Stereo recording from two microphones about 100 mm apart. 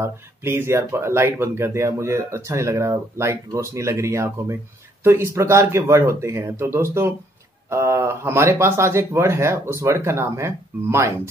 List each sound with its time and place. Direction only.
0.0 s speech: 25° right (ahead or behind)